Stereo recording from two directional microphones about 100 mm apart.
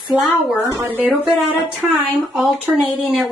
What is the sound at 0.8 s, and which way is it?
Speech, 15° right (ahead or behind).